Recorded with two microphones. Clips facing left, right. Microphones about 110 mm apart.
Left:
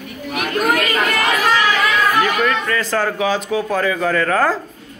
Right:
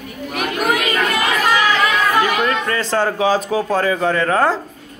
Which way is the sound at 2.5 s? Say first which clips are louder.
Even; 30° right (ahead or behind).